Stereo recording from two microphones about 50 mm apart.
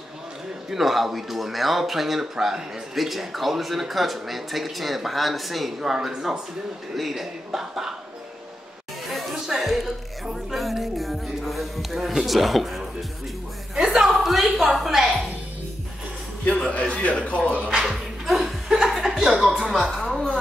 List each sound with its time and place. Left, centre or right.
0.7 s speech: centre
7.0 s a man's voice: centre
9.1 s speech: centre
13.7 s a sound: centre
16.4 s a man's voice: left
17.6 s music: centre
20.1 s a sound: centre